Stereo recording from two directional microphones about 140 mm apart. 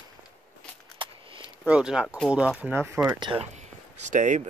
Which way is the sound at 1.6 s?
5° right (ahead or behind).